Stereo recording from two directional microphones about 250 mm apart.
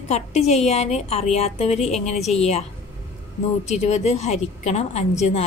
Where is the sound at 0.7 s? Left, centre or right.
Left.